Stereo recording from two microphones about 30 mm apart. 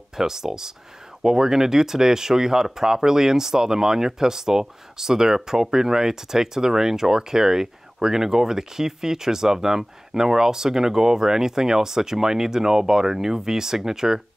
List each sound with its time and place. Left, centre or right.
0.1 s speech: centre